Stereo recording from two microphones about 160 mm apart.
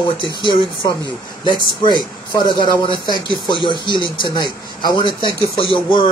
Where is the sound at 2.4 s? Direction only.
30° left (ahead or behind).